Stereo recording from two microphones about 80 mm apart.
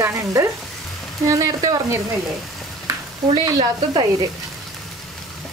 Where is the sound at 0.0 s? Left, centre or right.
Right.